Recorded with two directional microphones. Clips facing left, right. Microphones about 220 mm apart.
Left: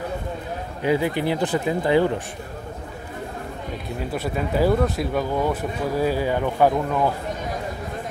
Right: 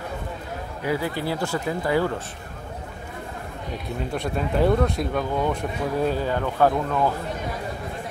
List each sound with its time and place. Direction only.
0.8 s speech: 20° left (ahead or behind)
4.1 s speech: 5° left (ahead or behind)